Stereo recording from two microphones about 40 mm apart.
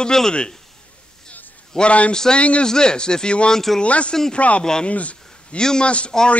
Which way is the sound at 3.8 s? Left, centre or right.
Left.